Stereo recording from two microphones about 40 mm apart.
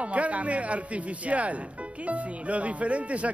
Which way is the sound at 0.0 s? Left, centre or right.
Right.